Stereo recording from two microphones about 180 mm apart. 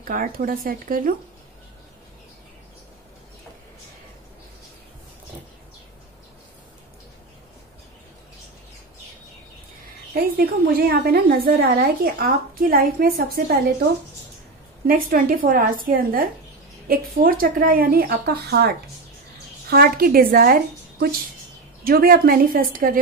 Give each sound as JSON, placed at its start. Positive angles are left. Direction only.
{"t": 0.0, "sound": "a woman's voice", "side_deg": -50}
{"t": 10.1, "sound": "a woman's voice", "side_deg": -55}
{"t": 15.0, "sound": "a woman's voice", "side_deg": -55}